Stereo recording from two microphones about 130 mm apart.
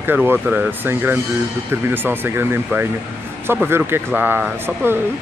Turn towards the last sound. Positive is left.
turn(degrees=-15)  # may be behind; listen again after turning